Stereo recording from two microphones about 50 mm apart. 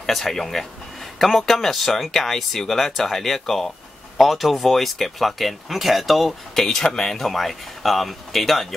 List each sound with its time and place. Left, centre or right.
0.0 s speech: centre
6.6 s speech: centre